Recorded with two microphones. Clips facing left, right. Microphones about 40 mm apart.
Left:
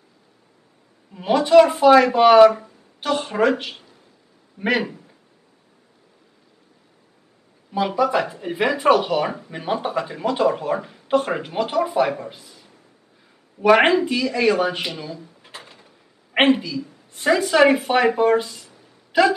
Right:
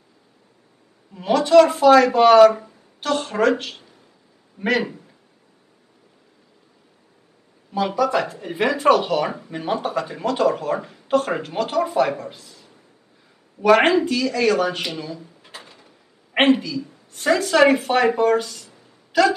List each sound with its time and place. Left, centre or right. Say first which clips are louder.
1.1 s speech: even; centre
7.7 s speech: even; centre
14.9 s a sound: right 1 dB; centre
16.4 s speech: right 1 dB; centre